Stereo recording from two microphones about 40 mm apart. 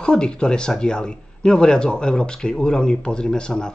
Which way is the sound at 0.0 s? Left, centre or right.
Left.